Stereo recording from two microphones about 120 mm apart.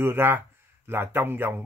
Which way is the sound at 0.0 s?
20° right (ahead or behind).